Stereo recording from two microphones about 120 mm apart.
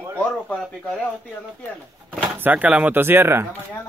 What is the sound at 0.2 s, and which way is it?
Speech, 10° left (ahead or behind).